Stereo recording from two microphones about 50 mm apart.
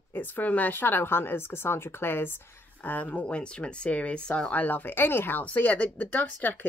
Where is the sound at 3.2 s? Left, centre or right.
Left.